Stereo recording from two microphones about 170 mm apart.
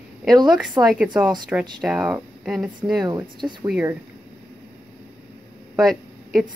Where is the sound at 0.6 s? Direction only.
5° right (ahead or behind).